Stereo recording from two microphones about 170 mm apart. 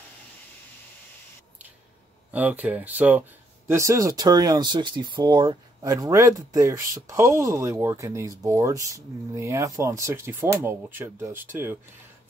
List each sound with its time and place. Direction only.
2.3 s speech: 10° right (ahead or behind)